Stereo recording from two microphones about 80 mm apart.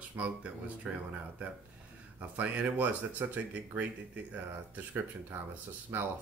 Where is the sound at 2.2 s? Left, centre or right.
Centre.